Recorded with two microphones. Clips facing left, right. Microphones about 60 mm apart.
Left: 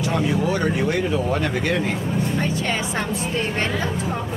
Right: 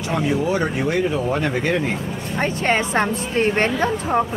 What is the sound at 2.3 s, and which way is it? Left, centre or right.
Speech, right.